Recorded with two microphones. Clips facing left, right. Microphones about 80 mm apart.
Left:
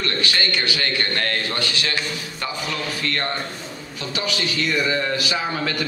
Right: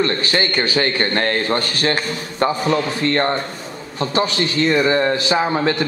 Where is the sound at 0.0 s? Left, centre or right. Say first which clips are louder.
Right 5 dB; right.